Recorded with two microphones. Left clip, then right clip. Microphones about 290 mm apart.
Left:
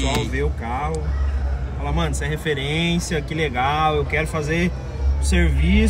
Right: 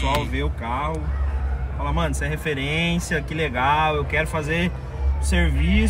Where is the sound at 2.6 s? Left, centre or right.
Centre.